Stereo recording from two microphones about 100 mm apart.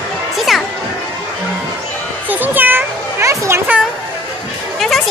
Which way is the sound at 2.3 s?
20° right (ahead or behind).